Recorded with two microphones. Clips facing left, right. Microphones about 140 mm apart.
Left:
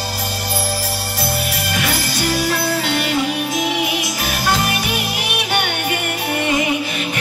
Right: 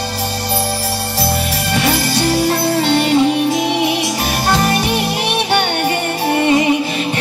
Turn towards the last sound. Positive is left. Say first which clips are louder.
# right 5 dB
turn(degrees=-30)  # may be behind; listen again after turning